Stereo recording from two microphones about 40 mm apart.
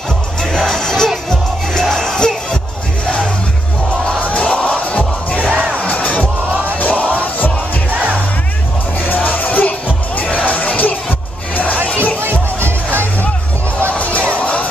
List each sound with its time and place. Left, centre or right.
0.4 s music: centre
4.2 s crowd: left
5.5 s crowd: right
5.8 s crowd: left
6.8 s music: left
9.0 s music: left
12.2 s music: right
13.9 s music: left